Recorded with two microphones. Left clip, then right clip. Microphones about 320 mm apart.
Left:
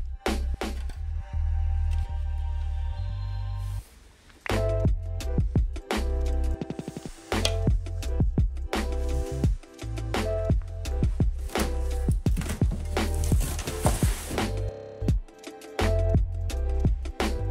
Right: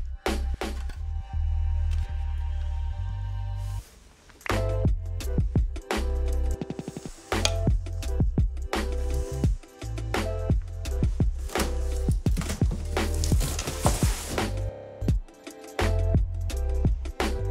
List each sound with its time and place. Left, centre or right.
0.2 s music: centre
4.4 s music: centre